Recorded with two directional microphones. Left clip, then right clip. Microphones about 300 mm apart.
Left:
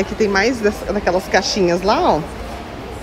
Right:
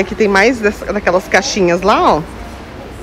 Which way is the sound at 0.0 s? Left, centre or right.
Centre.